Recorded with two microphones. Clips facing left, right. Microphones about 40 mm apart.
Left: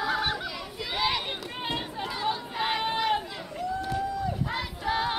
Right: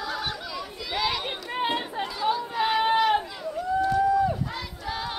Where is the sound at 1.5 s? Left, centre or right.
Right.